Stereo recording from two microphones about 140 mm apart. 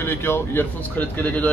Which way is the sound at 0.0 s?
15° left (ahead or behind).